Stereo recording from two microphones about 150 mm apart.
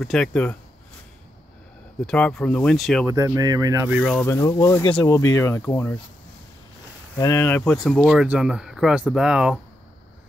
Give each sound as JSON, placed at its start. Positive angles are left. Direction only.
{"t": 0.0, "sound": "speech", "side_deg": 5}
{"t": 2.0, "sound": "speech", "side_deg": 5}
{"t": 3.1, "sound": "speech", "side_deg": -20}
{"t": 3.9, "sound": "speech", "side_deg": 0}
{"t": 4.2, "sound": "speech", "side_deg": 20}
{"t": 7.2, "sound": "speech", "side_deg": 20}
{"t": 7.7, "sound": "speech", "side_deg": 0}